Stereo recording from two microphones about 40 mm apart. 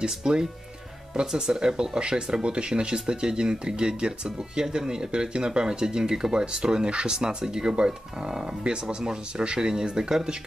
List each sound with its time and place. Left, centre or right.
0.0 s speech: centre